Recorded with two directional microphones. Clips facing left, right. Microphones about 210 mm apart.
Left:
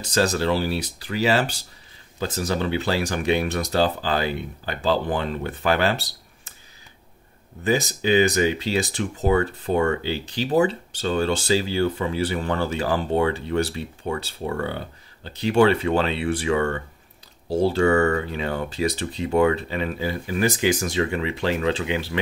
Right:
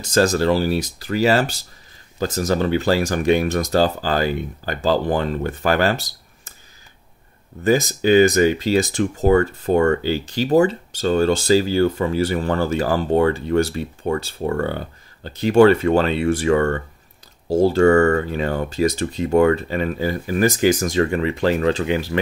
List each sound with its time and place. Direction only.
0.0 s speech: 45° right (ahead or behind)
7.6 s speech: 45° right (ahead or behind)